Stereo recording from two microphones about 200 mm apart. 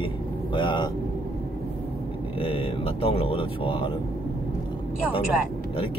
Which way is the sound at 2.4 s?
25° left (ahead or behind).